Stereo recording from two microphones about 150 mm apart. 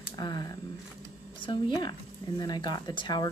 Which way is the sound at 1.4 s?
30° left (ahead or behind).